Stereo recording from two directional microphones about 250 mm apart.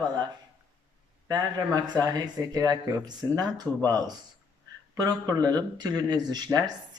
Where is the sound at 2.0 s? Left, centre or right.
Centre.